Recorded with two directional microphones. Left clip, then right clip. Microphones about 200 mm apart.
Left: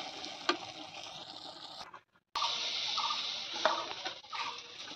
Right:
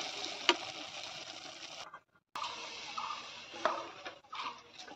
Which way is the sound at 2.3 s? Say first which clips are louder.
Left 7 dB; 5° right (ahead or behind).